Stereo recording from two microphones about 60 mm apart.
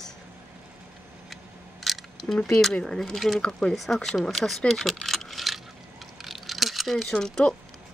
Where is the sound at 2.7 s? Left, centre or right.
Centre.